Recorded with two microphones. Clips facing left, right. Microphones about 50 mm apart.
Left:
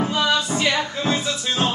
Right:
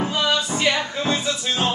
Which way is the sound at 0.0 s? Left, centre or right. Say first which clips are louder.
Left 1 dB; centre.